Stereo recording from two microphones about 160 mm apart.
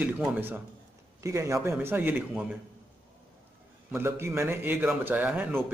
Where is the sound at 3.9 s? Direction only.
15° right (ahead or behind).